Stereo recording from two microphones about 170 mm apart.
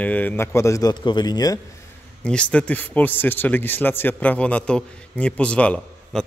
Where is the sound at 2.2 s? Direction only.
5° left (ahead or behind).